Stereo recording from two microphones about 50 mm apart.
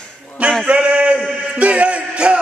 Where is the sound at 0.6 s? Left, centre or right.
Right.